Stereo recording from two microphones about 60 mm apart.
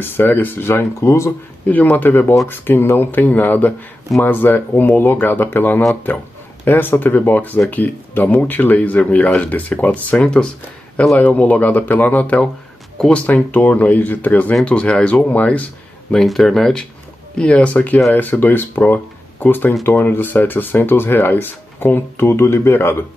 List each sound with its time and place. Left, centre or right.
0.0 s speech: left
1.7 s speech: left
10.1 s speech: centre
12.9 s speech: centre
13.3 s speech: left
14.6 s speech: centre
16.1 s speech: centre
17.4 s speech: centre; by 22.2 s left
22.2 s speech: left